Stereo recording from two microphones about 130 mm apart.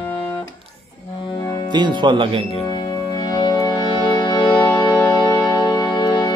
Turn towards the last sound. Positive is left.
turn(degrees=30)  # may be behind; listen again after turning